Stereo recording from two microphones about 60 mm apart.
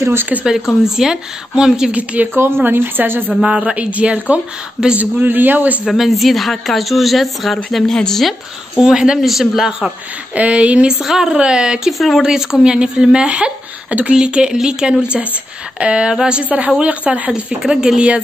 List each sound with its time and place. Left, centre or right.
0.0 s speech: right
0.8 s speech: centre
2.3 s a woman's voice: right
3.4 s speech: centre
4.9 s speech: right
5.9 s speech: centre
10.3 s speech: right
11.0 s speech: centre; by 17.3 s right
17.6 s speech: centre